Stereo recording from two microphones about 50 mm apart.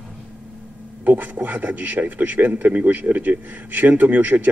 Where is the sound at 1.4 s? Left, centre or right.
Right.